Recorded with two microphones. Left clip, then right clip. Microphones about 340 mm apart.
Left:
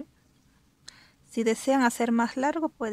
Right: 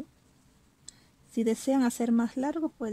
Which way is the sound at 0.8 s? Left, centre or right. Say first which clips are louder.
Left 4 dB; left.